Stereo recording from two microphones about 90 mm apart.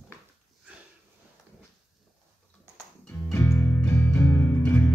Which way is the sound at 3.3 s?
25° left (ahead or behind).